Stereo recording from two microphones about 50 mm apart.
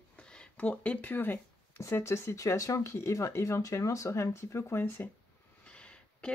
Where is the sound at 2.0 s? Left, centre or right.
Left.